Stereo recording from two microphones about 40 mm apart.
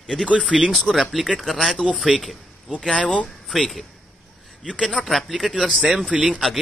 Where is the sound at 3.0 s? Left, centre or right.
Left.